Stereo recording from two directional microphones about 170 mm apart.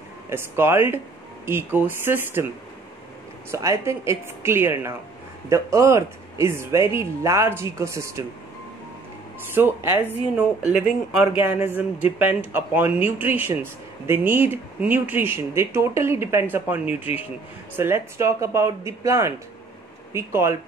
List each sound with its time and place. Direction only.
0.3 s speech: 15° right (ahead or behind)
3.5 s speech: 15° right (ahead or behind)
9.5 s speech: 10° right (ahead or behind)